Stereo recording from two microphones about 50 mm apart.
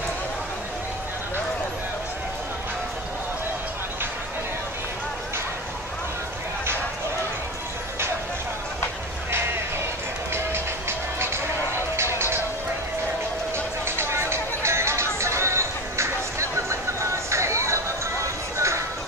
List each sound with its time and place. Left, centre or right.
10.3 s music: right
13.8 s music: right